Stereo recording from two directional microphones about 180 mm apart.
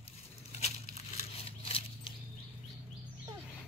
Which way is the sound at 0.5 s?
35° left (ahead or behind).